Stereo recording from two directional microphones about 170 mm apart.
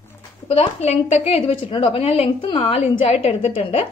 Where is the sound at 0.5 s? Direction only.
40° left (ahead or behind).